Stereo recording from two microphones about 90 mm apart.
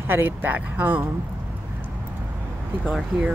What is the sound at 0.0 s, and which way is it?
Speech, 25° right (ahead or behind).